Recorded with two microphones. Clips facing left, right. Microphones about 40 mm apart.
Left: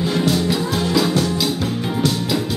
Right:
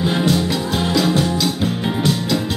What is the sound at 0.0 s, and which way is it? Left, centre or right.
Music, right.